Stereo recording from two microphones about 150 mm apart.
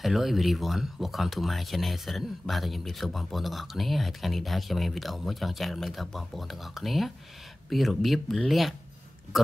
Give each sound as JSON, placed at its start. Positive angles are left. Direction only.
{"t": 0.0, "sound": "speech", "side_deg": 0}